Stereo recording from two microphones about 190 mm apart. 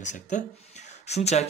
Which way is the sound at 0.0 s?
40° left (ahead or behind).